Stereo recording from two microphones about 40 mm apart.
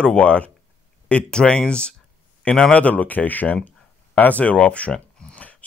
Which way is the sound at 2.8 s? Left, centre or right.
Left.